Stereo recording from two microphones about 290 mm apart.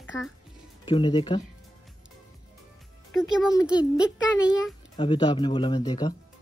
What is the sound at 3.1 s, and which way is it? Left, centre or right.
A child's voice, centre.